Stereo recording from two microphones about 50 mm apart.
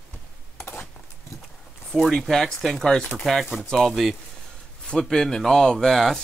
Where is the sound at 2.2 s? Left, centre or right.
Centre.